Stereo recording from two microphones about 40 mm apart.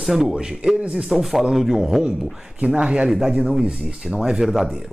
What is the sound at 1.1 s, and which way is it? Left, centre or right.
Speech, centre.